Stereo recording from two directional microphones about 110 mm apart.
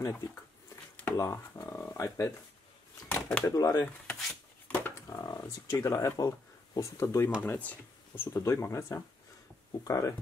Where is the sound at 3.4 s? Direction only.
30° left (ahead or behind).